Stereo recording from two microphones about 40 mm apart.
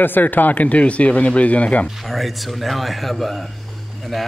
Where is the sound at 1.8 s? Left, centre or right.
Centre.